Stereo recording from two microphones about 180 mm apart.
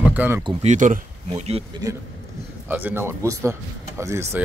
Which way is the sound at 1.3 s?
35° right (ahead or behind).